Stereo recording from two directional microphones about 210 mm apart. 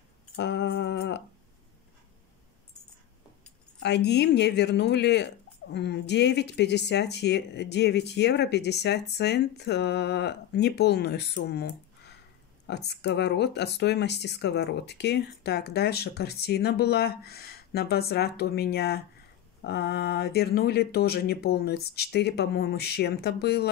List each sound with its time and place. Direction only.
0.4 s humming: 55° left (ahead or behind)
3.8 s speech: 55° left (ahead or behind)